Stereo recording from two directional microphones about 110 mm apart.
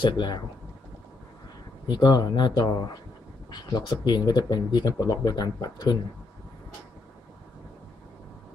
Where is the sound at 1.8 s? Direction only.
40° left (ahead or behind).